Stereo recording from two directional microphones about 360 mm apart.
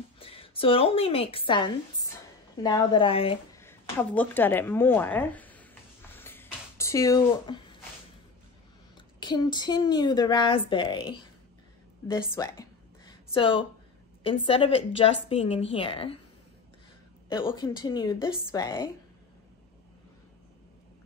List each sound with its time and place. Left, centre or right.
0.2 s a woman's voice: centre
2.5 s a sound: centre
8.9 s speech: centre
12.1 s a sound: centre
14.2 s speech: centre
17.3 s speech: centre